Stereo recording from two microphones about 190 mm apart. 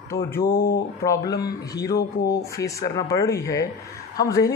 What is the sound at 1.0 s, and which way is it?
Speech, 20° left (ahead or behind).